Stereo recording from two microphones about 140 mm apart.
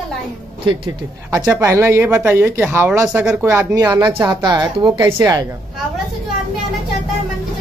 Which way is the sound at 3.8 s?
25° right (ahead or behind).